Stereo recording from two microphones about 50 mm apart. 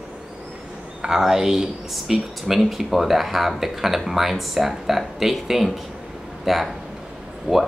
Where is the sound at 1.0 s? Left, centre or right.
Centre.